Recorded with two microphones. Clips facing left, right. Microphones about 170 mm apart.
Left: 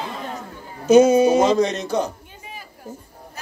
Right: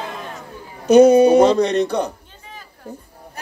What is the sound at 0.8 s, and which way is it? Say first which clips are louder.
A man's voice: right 3 dB; 60° right (ahead or behind).